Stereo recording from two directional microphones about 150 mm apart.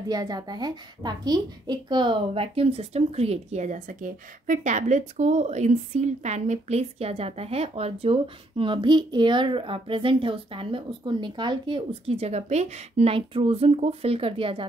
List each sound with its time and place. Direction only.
0.1 s a woman's voice: 25° right (ahead or behind)